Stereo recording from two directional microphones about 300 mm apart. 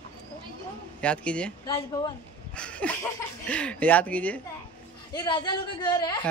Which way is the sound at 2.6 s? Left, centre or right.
Centre.